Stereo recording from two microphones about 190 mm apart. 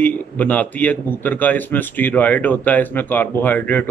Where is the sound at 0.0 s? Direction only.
10° left (ahead or behind).